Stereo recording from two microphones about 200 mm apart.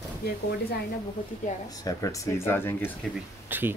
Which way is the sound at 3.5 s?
10° right (ahead or behind).